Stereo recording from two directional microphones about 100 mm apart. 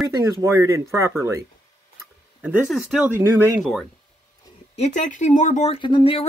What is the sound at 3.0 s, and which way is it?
Speech, 20° right (ahead or behind).